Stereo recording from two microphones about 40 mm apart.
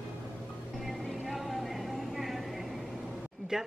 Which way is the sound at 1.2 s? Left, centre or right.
Centre.